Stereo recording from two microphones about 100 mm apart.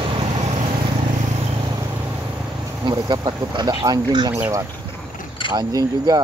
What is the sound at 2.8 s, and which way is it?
Speech, 45° right (ahead or behind).